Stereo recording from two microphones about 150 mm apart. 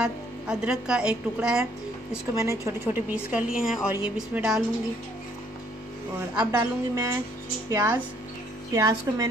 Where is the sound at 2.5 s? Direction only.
15° right (ahead or behind).